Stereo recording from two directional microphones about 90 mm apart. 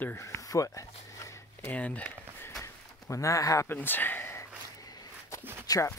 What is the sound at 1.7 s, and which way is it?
Speech, 15° left (ahead or behind).